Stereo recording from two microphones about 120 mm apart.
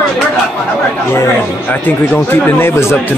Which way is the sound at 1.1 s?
20° left (ahead or behind).